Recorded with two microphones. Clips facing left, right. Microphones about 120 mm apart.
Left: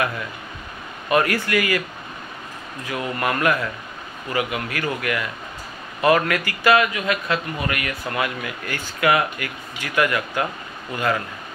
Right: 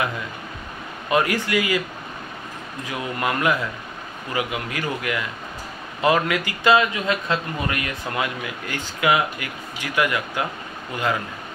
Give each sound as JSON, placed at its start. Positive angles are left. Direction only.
{"t": 1.1, "sound": "a man's voice", "side_deg": -20}
{"t": 2.9, "sound": "a man's voice", "side_deg": -15}